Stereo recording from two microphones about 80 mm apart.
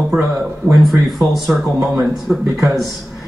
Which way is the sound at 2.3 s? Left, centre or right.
Right.